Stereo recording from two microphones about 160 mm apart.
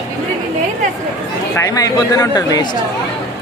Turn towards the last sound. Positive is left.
turn(degrees=25)  # may be behind; listen again after turning